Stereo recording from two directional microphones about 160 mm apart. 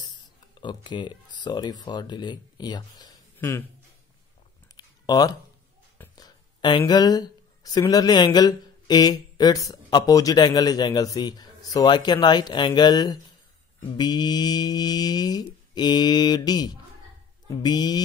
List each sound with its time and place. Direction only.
0.6 s speech: 30° left (ahead or behind)
3.3 s speech: 15° left (ahead or behind)
4.7 s a sound: 25° left (ahead or behind)
6.8 s speech: 25° left (ahead or behind)